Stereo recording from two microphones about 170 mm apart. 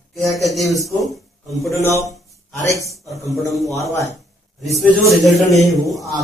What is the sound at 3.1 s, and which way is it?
Speech, 20° left (ahead or behind).